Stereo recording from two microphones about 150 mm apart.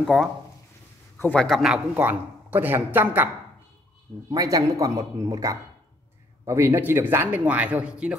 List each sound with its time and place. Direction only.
0.0 s a man's voice: centre (ahead or behind)
4.3 s a man's voice: 25° right (ahead or behind); by 8.2 s 5° right (ahead or behind)